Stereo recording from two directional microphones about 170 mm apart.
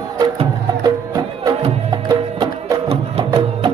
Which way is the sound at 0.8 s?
20° right (ahead or behind).